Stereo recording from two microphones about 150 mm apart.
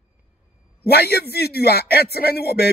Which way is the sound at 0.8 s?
90° left.